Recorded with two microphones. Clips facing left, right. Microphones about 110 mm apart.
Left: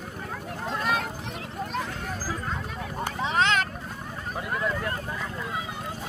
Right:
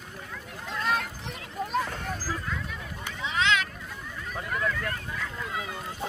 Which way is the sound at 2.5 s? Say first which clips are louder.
Left 3 dB; 45° left (ahead or behind).